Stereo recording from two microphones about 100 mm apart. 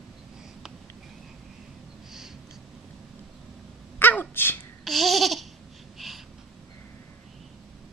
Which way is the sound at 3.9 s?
20° left (ahead or behind).